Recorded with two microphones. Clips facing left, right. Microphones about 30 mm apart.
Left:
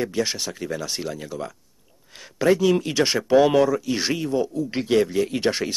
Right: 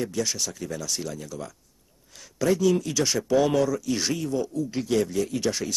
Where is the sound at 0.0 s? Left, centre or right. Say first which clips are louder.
Left 3 dB; left.